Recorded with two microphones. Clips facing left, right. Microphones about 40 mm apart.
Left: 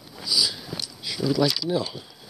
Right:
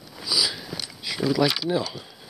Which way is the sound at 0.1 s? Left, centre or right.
Centre.